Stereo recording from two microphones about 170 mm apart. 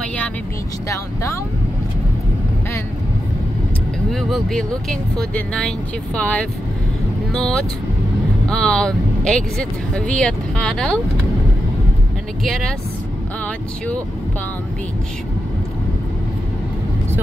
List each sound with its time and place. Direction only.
0.8 s speech: 15° left (ahead or behind)
4.1 s speech: centre (ahead or behind)
12.4 s speech: centre (ahead or behind)